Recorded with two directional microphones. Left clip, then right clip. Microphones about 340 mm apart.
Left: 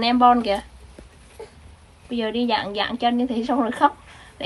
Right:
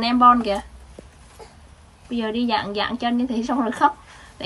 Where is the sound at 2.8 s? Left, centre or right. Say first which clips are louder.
Left 1 dB; centre.